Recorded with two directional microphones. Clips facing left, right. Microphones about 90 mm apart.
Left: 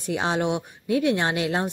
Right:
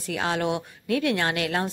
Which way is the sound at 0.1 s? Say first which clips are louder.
Left 2 dB; 20° left (ahead or behind).